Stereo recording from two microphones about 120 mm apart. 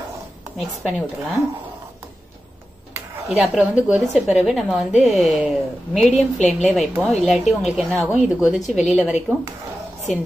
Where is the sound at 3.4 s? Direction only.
10° right (ahead or behind).